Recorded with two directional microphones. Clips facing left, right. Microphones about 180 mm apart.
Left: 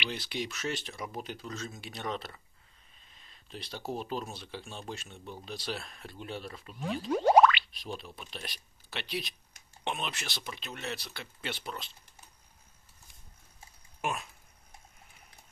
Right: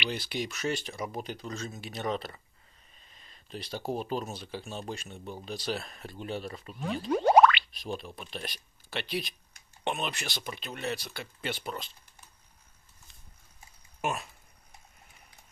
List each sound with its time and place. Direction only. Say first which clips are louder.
0.1 s speech: right 2 dB; 5° right (ahead or behind)
7.1 s music: right 1 dB; 55° right (ahead or behind)
7.7 s speech: right 4 dB; centre (ahead or behind)